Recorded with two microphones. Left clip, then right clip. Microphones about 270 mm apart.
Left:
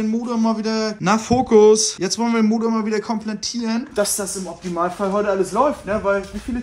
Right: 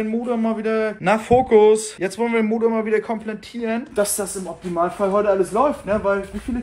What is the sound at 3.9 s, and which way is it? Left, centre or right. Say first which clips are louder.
Speech: left 2 dB; centre.